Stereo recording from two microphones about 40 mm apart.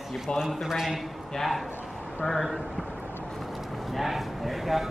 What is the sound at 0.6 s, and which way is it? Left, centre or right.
Speech, centre.